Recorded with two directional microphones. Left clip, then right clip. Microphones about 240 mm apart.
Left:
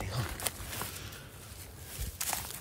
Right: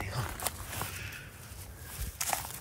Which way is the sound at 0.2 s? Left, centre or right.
Centre.